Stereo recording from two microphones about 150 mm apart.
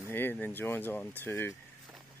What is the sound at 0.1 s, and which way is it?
Speech, 15° left (ahead or behind).